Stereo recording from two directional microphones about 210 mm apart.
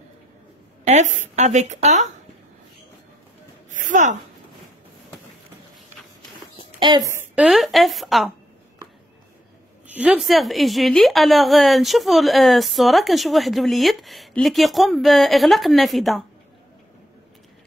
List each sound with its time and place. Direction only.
0.8 s a woman's voice: 35° right (ahead or behind)
3.7 s speech: 35° right (ahead or behind)
7.1 s a sound: 10° right (ahead or behind)
7.4 s a woman's voice: centre (ahead or behind)
9.8 s a woman's voice: 5° right (ahead or behind)